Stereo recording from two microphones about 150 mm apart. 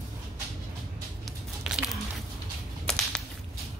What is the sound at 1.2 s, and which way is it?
Music, 5° right (ahead or behind).